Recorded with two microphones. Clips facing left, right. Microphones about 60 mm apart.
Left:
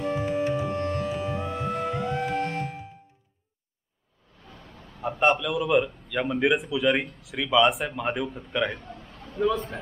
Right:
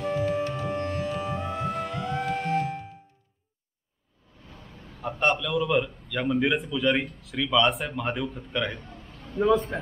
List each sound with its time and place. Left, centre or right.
0.1 s music: centre
0.7 s music: centre
5.2 s a man's voice: centre
8.8 s a sound: left